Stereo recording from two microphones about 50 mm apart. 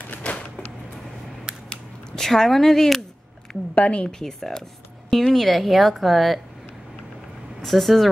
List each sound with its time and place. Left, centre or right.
0.2 s a sound: left
1.7 s speech: centre
3.7 s a woman's voice: left
4.0 s a woman's voice: centre
7.6 s a woman's voice: centre